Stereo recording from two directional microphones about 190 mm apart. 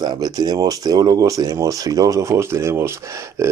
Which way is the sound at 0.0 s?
20° right (ahead or behind).